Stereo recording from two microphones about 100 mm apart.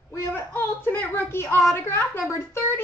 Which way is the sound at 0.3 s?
20° left (ahead or behind).